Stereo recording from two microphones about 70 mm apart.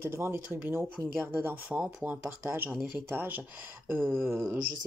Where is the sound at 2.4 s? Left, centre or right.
Right.